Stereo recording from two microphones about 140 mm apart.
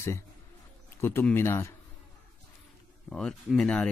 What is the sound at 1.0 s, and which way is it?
Speech, 15° left (ahead or behind).